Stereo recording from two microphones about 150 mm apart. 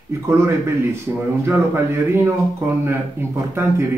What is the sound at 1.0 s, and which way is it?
Speech, 15° right (ahead or behind).